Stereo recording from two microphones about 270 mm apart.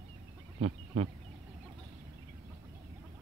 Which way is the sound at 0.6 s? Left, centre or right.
Right.